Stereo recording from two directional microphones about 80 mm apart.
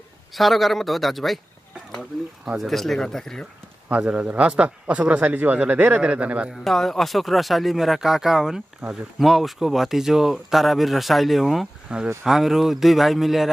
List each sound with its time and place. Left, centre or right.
0.4 s speech: centre
3.9 s a man's voice: centre
6.6 s speech: centre